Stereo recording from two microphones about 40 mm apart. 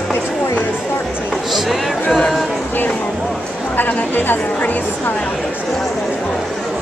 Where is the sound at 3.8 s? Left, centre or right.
Left.